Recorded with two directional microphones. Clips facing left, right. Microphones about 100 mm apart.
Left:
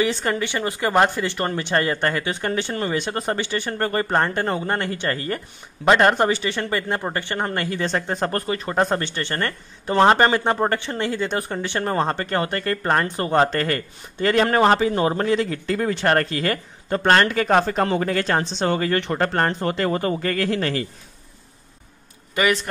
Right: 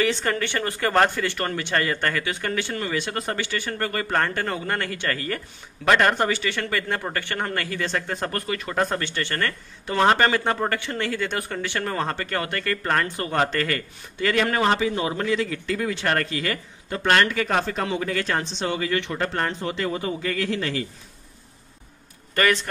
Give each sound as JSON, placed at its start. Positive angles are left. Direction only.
{"t": 0.0, "sound": "a man's voice", "side_deg": 15}
{"t": 22.3, "sound": "a man's voice", "side_deg": 10}